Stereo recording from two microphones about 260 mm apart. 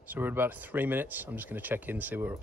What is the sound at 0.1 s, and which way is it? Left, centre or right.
Speech, centre.